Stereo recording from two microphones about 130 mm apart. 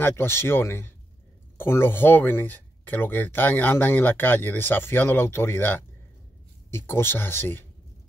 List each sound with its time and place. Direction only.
0.0 s speech: 20° left (ahead or behind)